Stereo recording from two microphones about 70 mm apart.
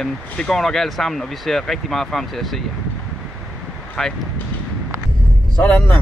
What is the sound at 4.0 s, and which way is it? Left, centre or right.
Speech, centre.